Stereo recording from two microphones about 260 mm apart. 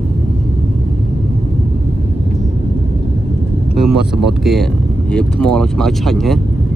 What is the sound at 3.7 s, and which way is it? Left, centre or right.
Speech, centre.